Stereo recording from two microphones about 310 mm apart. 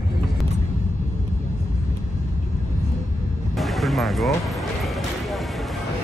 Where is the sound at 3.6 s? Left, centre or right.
Centre.